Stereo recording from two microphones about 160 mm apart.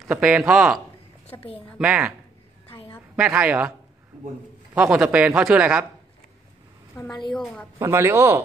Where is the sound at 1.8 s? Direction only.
5° right (ahead or behind).